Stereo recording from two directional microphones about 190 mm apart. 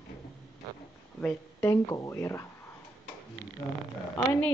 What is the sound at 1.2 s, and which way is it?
Speech, 15° left (ahead or behind).